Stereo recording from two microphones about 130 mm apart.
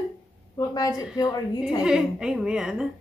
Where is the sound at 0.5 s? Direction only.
30° left (ahead or behind).